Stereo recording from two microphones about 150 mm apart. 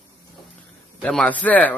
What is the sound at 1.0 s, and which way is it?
Speech, 5° left (ahead or behind).